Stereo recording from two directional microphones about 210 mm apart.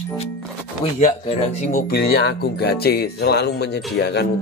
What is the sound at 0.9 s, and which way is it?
Speech, 30° left (ahead or behind).